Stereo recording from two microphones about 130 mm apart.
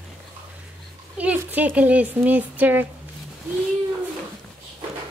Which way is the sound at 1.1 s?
10° right (ahead or behind).